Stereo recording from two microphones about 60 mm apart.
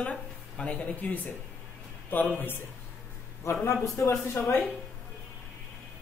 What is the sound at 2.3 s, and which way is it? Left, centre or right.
Speech, left.